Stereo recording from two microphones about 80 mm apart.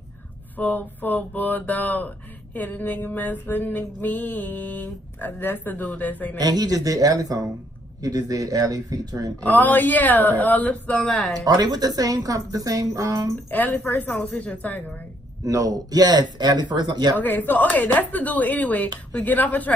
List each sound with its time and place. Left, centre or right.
0.6 s speech: left
6.3 s speech: right
9.4 s speech: left
11.4 s speech: right
13.5 s speech: left
15.4 s speech: right
17.2 s speech: left